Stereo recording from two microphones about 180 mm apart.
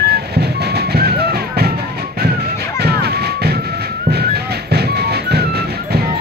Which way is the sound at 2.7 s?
60° right (ahead or behind).